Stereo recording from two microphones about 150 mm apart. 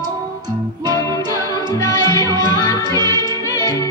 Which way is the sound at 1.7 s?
20° left (ahead or behind).